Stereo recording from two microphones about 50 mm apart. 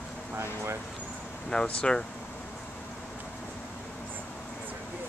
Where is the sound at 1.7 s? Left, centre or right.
Left.